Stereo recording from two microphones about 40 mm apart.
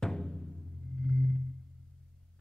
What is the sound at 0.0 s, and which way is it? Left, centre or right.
Music, centre.